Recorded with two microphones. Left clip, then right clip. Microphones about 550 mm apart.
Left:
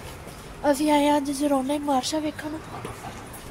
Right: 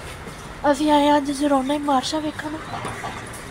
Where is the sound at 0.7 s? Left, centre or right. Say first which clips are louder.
Right 4 dB; left.